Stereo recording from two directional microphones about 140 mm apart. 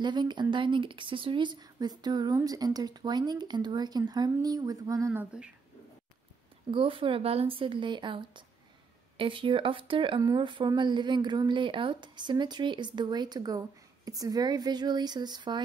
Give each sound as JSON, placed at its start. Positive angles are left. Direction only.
{"t": 0.0, "sound": "speech", "side_deg": -30}
{"t": 6.7, "sound": "a woman's voice", "side_deg": -40}